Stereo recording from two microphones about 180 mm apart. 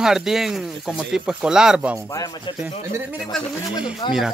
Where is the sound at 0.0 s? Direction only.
5° right (ahead or behind).